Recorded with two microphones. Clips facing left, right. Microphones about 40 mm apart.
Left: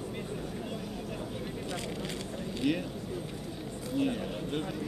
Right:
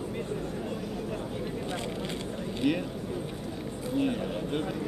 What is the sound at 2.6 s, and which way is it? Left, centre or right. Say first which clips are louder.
Speech: right 3 dB; centre.